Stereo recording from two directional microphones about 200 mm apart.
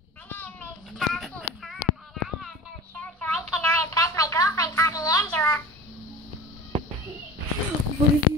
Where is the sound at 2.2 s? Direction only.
5° left (ahead or behind).